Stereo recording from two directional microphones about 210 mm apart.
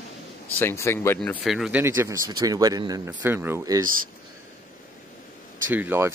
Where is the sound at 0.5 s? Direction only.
10° left (ahead or behind).